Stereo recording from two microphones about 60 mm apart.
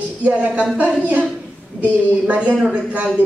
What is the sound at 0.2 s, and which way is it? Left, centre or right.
Speech, right.